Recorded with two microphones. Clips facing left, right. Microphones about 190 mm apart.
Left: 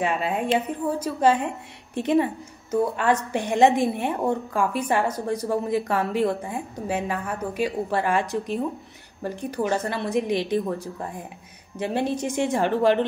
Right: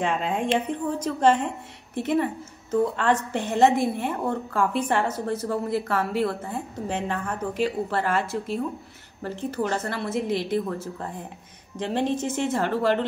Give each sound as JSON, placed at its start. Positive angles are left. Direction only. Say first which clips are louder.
{"t": 0.0, "sound": "a woman's voice", "louder": "left 1 dB", "side_deg": 5}